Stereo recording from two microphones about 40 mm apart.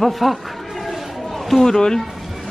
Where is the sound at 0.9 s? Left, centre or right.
Centre.